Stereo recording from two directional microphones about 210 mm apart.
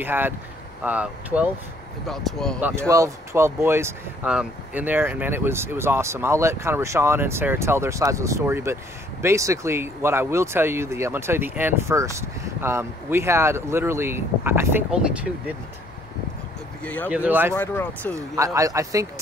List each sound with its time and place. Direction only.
0.0 s speech: 10° right (ahead or behind)
2.9 s speech: 15° right (ahead or behind)
16.8 s speech: 5° left (ahead or behind)
17.1 s speech: 10° right (ahead or behind)
17.6 s speech: 10° left (ahead or behind)
18.1 s speech: 15° right (ahead or behind)